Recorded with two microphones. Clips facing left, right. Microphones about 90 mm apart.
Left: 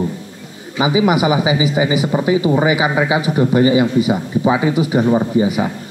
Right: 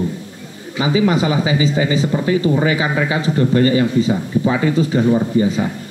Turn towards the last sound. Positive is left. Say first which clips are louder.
# left 1 dB
turn(degrees=15)  # may be behind; listen again after turning